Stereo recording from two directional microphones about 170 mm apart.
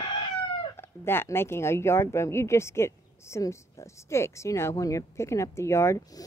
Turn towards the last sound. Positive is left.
turn(degrees=15)  # may be behind; listen again after turning